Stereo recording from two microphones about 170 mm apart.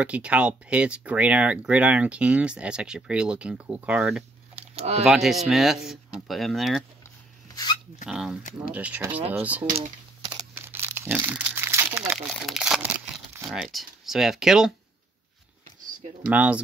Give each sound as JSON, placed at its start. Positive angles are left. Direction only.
{"t": 0.0, "sound": "speech", "side_deg": -5}
{"t": 4.6, "sound": "a sound", "side_deg": -40}
{"t": 5.0, "sound": "speech", "side_deg": 0}
{"t": 8.0, "sound": "speech", "side_deg": -5}
{"t": 9.8, "sound": "computer keyboard", "side_deg": -25}
{"t": 10.5, "sound": "crumpling", "side_deg": -15}
{"t": 12.0, "sound": "speech", "side_deg": -5}
{"t": 16.3, "sound": "speech", "side_deg": -5}